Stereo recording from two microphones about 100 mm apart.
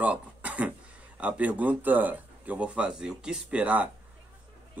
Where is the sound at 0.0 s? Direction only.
15° right (ahead or behind).